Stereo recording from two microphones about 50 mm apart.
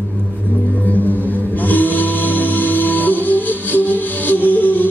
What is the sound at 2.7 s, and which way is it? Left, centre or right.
Music, left.